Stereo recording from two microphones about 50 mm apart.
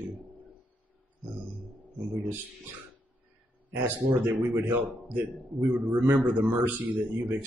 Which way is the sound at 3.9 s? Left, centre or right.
Right.